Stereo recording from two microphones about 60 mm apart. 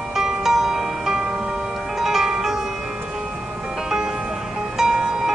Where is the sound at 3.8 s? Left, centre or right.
Centre.